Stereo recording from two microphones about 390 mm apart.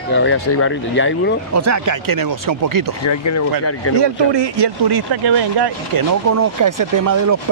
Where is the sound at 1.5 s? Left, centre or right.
Right.